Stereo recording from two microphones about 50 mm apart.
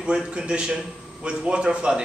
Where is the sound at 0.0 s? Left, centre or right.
Centre.